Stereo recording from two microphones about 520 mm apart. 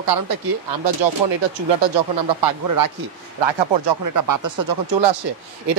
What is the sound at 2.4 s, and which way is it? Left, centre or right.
Speech, right.